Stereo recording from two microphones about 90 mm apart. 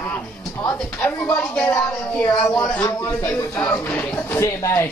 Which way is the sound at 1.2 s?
30° left (ahead or behind).